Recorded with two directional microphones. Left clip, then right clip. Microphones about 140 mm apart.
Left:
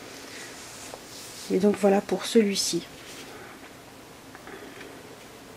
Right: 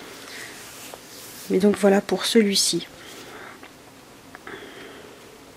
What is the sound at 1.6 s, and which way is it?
Speech, 45° right (ahead or behind).